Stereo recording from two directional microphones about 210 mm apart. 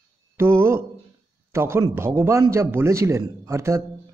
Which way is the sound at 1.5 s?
10° right (ahead or behind).